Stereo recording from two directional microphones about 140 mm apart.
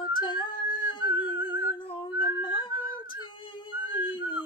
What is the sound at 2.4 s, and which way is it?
Female singing, 35° left (ahead or behind).